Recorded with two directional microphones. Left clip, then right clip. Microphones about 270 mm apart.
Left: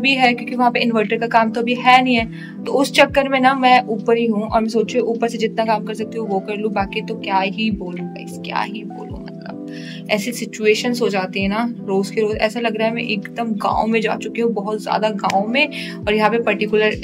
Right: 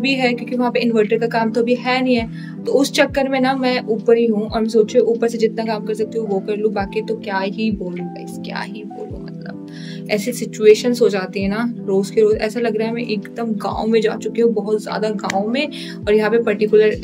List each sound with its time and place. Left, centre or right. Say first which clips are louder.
0.0 s a woman's voice: left 3 dB; centre
10.0 s a woman's voice: even; centre